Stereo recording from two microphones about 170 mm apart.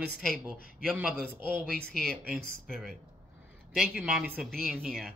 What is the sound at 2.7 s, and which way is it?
Speech, 5° left (ahead or behind).